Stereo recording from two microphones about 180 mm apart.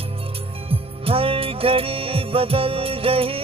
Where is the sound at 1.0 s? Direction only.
30° right (ahead or behind).